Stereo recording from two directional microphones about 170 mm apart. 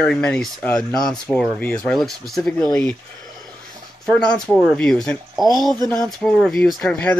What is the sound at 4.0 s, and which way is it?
Speech, 5° left (ahead or behind).